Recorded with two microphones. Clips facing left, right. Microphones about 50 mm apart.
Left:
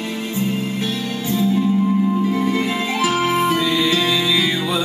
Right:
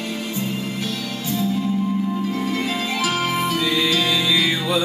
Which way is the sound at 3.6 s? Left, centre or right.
Centre.